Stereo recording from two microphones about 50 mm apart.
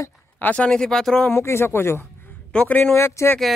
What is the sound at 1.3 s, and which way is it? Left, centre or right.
Speech, left.